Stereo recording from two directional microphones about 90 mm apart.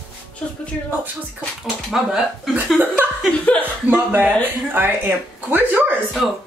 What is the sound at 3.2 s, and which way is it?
Speech, 15° left (ahead or behind).